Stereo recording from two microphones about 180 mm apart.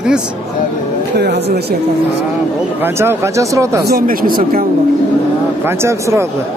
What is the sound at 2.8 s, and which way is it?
Speech, 15° right (ahead or behind).